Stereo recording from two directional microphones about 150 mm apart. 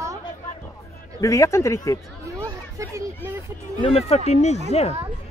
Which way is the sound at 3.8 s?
45° left (ahead or behind).